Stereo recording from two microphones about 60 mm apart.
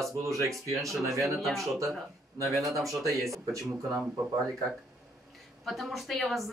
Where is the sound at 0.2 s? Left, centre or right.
Right.